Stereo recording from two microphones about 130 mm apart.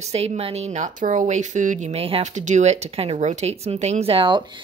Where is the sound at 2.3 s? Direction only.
65° right (ahead or behind).